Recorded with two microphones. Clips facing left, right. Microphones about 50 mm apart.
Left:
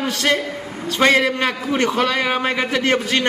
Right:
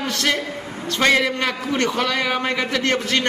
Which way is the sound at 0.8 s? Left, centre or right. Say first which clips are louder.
Left 2 dB; centre.